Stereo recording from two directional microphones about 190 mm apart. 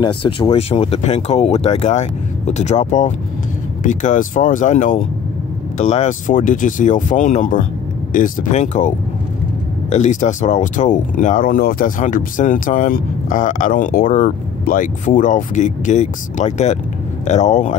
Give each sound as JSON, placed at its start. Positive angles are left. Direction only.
{"t": 0.0, "sound": "speech", "side_deg": 25}